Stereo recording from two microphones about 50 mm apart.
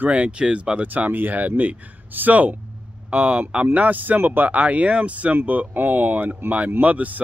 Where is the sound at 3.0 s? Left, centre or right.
Right.